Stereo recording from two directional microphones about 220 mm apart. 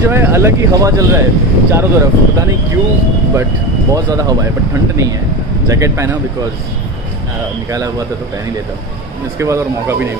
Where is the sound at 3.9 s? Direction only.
15° right (ahead or behind).